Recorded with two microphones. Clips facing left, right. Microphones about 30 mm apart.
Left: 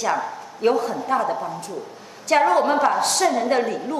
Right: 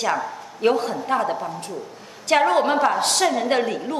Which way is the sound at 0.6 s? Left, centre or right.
Right.